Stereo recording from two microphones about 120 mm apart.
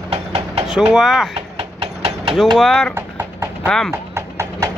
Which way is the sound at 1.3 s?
50° right (ahead or behind).